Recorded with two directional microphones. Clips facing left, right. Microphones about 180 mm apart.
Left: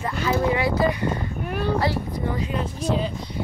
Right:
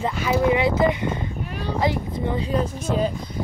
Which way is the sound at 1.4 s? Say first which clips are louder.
Left 4 dB; 55° left (ahead or behind).